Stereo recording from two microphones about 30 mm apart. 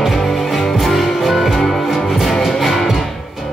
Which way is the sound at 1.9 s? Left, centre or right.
Centre.